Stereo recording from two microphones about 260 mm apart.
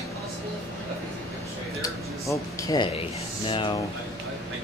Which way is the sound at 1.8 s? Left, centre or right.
Centre.